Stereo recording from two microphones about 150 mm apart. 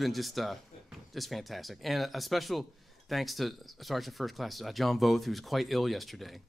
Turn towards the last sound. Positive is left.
turn(degrees=0)  # may be behind; listen again after turning